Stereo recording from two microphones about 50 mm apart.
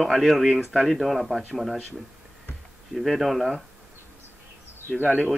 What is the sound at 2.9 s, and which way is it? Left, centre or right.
Speech, centre.